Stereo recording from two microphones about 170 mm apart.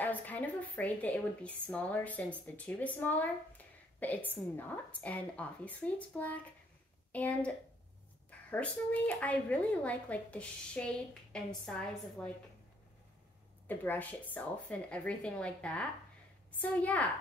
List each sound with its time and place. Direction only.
0.0 s a woman's voice: 10° left (ahead or behind)
13.7 s a woman's voice: 10° left (ahead or behind)